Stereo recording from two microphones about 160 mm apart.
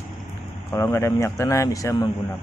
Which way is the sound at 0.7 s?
15° left (ahead or behind).